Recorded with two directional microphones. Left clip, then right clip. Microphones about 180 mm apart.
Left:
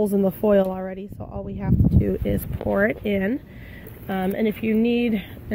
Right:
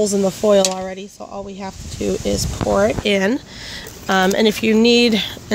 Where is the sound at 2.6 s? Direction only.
50° right (ahead or behind).